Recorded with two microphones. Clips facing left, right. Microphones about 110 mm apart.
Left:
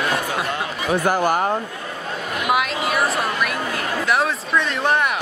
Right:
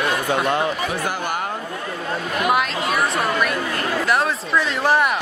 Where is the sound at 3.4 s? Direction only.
Centre (ahead or behind).